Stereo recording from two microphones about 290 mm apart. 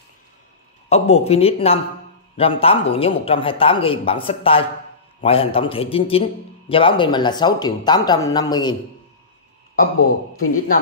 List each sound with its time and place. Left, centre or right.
0.8 s speech: left
10.4 s speech: left